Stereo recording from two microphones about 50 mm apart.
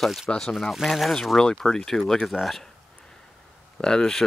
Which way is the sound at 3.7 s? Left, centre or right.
Centre.